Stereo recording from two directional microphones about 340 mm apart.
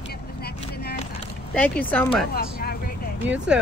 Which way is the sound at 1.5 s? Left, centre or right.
Centre.